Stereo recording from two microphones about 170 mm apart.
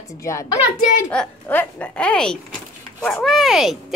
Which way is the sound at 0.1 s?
20° left (ahead or behind).